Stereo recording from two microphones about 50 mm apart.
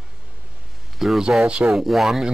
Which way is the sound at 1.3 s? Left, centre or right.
Centre.